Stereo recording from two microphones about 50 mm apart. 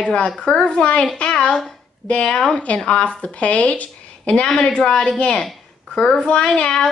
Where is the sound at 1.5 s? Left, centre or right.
Centre.